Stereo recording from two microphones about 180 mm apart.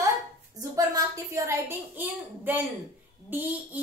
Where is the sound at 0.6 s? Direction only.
20° right (ahead or behind).